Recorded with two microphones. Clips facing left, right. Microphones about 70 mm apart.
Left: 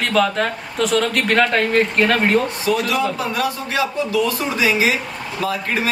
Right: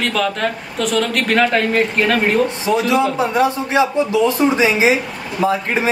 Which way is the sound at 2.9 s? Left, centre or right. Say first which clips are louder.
Right 5 dB; right.